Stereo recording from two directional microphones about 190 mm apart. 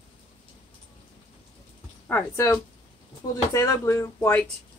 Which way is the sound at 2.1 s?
15° left (ahead or behind).